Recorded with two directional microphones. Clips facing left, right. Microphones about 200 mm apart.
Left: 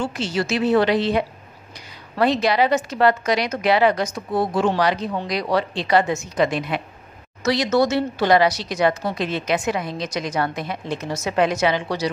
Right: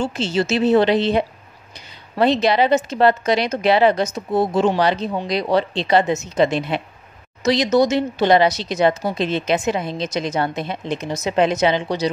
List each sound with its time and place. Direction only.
0.0 s speech: 25° right (ahead or behind)